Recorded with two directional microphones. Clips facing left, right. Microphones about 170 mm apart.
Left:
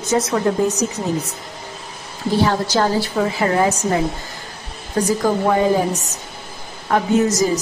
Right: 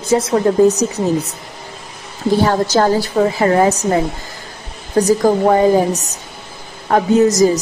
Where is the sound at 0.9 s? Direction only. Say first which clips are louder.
Right 5 dB; 65° right (ahead or behind).